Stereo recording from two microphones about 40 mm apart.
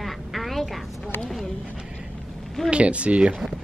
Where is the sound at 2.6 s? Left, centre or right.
Right.